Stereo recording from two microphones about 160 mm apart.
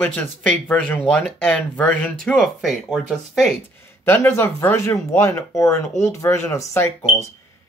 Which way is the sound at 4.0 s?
15° left (ahead or behind).